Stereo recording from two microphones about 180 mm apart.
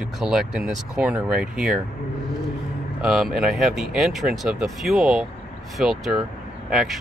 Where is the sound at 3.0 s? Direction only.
Centre (ahead or behind).